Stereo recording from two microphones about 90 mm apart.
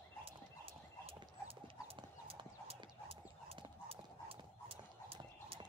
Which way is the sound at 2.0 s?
90° right.